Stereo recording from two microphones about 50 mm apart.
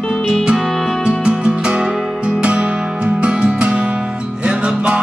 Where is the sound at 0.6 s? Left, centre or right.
Centre.